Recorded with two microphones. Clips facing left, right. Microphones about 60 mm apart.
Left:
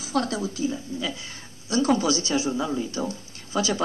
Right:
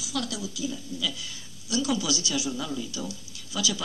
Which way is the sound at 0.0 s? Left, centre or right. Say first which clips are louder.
Left 6 dB; left.